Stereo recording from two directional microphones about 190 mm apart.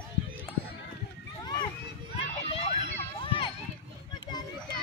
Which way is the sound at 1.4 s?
20° left (ahead or behind).